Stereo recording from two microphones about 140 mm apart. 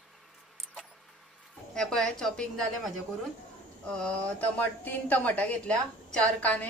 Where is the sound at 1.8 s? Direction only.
5° left (ahead or behind).